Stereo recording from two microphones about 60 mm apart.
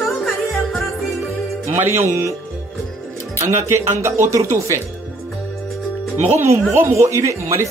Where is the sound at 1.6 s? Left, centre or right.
Right.